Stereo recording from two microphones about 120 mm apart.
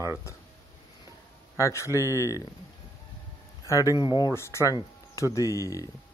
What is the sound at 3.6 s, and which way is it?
Speech, 25° left (ahead or behind).